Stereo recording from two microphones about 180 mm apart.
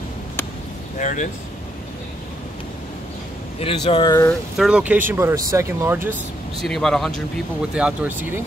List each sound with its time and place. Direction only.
0.9 s speech: 45° left (ahead or behind)
3.5 s speech: 30° left (ahead or behind)
4.3 s speech: 5° right (ahead or behind)
6.6 s speech: centre (ahead or behind)